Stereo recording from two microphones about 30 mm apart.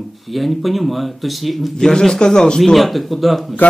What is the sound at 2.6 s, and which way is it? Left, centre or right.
Speech, centre.